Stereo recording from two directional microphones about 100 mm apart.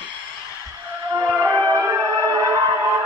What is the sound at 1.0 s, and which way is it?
Music, 40° right (ahead or behind).